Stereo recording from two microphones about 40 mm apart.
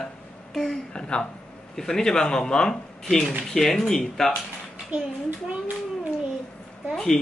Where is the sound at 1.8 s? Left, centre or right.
Centre.